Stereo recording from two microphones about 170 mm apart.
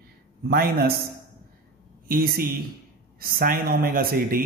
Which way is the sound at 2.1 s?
55° right (ahead or behind).